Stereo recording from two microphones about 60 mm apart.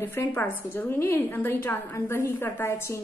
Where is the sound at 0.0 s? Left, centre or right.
Left.